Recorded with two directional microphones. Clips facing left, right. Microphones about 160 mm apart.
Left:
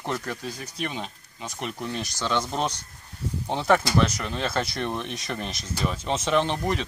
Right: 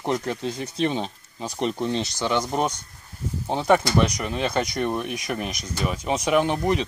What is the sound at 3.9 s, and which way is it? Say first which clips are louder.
Speech: right 2 dB; 10° right (ahead or behind).